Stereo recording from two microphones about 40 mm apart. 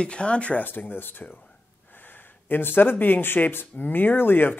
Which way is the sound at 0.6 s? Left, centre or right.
Left.